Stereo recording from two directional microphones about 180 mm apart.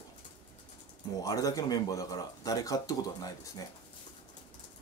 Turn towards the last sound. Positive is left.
turn(degrees=20)  # may be behind; listen again after turning